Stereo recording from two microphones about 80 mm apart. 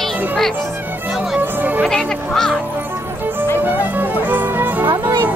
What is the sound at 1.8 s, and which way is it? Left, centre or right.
Speech, centre.